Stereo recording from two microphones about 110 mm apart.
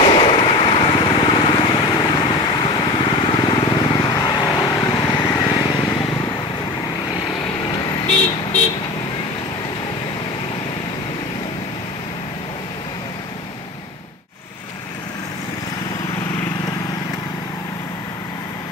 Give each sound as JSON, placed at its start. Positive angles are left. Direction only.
{"t": 0.1, "sound": "vehicle", "side_deg": 50}
{"t": 4.6, "sound": "vehicle", "side_deg": 25}
{"t": 5.1, "sound": "vehicle", "side_deg": 40}